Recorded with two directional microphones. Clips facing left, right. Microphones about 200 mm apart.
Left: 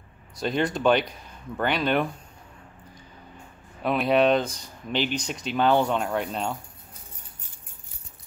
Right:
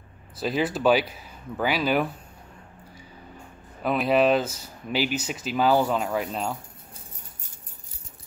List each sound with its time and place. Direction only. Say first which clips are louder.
0.4 s speech: even; 5° right (ahead or behind)
3.8 s speech: even; centre (ahead or behind)